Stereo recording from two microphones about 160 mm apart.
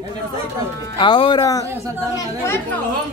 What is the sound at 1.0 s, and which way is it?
Speech, 30° left (ahead or behind).